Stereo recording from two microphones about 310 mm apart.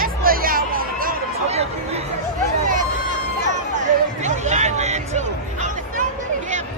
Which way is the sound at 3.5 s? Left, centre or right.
Right.